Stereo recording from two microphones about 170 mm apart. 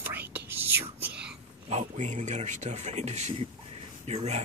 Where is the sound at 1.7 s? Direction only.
45° right (ahead or behind).